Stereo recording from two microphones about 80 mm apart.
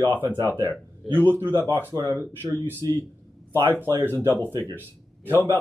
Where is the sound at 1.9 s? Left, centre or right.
Right.